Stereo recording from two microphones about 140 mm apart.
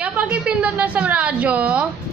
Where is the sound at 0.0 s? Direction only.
10° right (ahead or behind).